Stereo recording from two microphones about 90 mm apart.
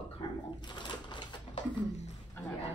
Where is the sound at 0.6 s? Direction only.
55° left (ahead or behind).